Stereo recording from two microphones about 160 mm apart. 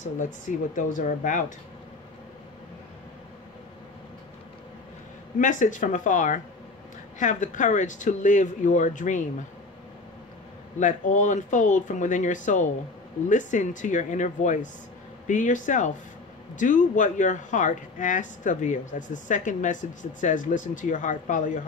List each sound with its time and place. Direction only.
0.7 s speech: 55° left (ahead or behind)
5.4 s speech: 55° left (ahead or behind)
10.8 s speech: 50° left (ahead or behind)